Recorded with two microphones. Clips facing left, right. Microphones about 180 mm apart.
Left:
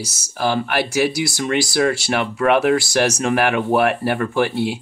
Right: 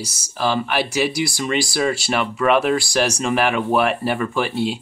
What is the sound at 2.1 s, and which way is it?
Speech, 60° left (ahead or behind).